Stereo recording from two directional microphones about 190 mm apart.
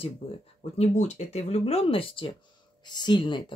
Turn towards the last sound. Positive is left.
turn(degrees=25)  # may be behind; listen again after turning